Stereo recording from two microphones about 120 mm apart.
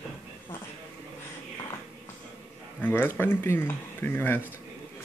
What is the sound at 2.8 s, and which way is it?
Speech, 20° left (ahead or behind).